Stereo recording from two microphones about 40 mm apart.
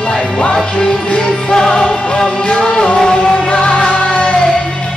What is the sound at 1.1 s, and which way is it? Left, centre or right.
Music, left.